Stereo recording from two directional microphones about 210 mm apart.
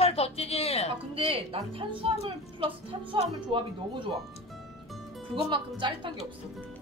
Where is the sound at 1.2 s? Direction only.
25° right (ahead or behind).